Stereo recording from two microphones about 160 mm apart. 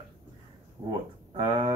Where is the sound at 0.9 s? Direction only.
30° right (ahead or behind).